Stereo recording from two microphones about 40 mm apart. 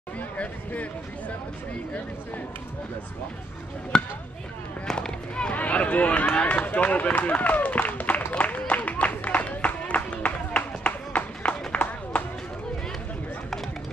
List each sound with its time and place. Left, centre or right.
3.9 s speech: left
5.5 s run: left
9.7 s a sound: left